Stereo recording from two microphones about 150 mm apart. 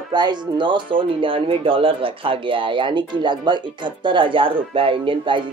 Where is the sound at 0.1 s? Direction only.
30° right (ahead or behind).